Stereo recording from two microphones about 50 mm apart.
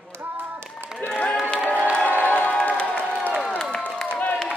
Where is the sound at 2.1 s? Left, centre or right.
Right.